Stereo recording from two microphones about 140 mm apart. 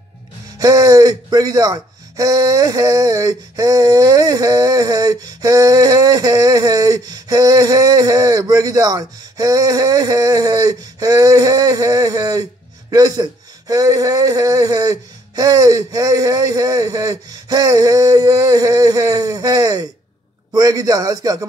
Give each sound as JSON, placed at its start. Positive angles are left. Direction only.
{"t": 0.6, "sound": "speech", "side_deg": -25}